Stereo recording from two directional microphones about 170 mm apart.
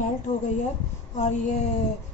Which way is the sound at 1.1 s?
45° left (ahead or behind).